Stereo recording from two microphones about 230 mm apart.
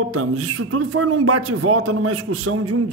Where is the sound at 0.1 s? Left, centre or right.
Right.